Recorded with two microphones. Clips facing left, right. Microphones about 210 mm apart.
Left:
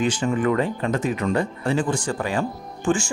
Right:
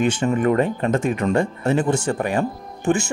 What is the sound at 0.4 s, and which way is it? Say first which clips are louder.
Speech: right 3 dB; 45° right (ahead or behind).